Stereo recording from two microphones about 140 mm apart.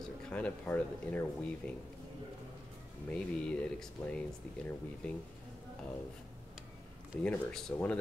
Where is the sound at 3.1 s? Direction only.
5° left (ahead or behind).